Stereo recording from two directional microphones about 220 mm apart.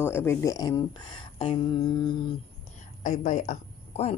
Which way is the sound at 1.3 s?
25° left (ahead or behind).